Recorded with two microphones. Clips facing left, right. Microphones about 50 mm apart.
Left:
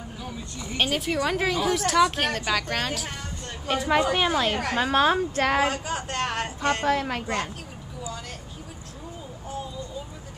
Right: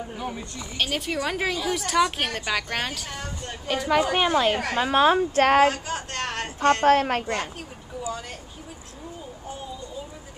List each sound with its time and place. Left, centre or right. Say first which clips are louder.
0.7 s a woman's voice: left 2 dB; centre
3.6 s a woman's voice: even; centre
4.1 s a woman's voice: right 2 dB; centre
4.8 s a woman's voice: right 3 dB; centre
5.4 s speech: right 6 dB; right
5.7 s speech: right 1 dB; centre
6.8 s a woman's voice: right 6 dB; right